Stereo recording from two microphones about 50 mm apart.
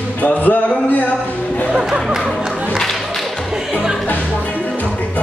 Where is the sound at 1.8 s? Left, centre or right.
Centre.